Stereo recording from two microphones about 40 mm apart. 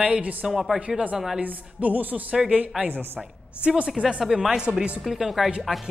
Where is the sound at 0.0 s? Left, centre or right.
Right.